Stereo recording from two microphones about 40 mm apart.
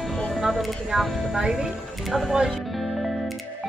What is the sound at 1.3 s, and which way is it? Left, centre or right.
Speech, centre.